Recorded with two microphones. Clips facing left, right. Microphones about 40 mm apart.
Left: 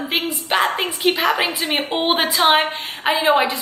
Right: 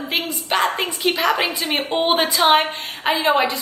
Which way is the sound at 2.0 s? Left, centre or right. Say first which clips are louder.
Right 1 dB; centre.